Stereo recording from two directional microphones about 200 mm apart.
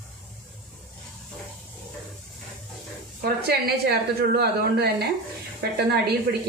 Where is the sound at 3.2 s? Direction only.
50° right (ahead or behind).